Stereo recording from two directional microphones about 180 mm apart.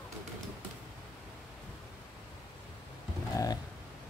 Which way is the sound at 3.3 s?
20° left (ahead or behind).